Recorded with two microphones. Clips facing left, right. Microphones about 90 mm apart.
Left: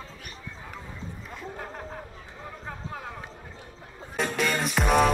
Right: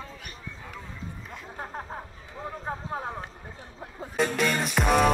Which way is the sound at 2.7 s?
30° right (ahead or behind).